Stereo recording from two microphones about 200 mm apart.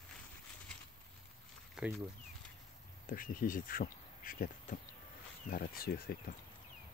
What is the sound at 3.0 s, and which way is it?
A man's voice, 45° left (ahead or behind).